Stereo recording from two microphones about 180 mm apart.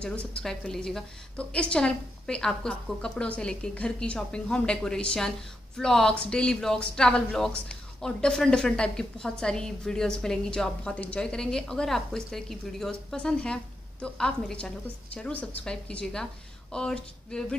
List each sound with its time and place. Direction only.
0.0 s speech: 5° left (ahead or behind)